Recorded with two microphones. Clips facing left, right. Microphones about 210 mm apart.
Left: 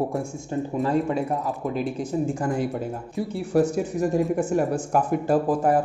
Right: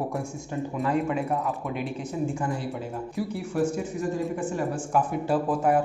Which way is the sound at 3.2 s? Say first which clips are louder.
Left 2 dB; 25° left (ahead or behind).